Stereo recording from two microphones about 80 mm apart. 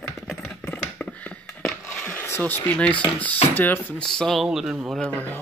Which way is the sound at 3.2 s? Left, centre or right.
Left.